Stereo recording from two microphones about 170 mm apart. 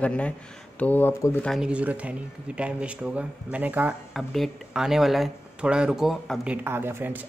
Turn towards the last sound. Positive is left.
turn(degrees=-10)  # may be behind; listen again after turning